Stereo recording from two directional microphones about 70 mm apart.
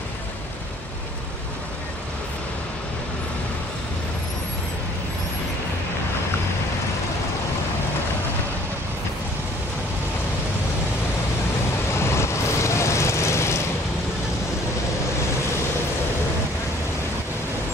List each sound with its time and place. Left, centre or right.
12.0 s vehicle: left